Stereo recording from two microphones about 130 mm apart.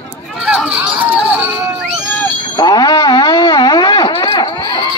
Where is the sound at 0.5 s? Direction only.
10° right (ahead or behind).